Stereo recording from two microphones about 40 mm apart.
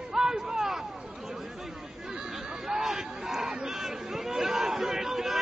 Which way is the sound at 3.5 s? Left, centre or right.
Centre.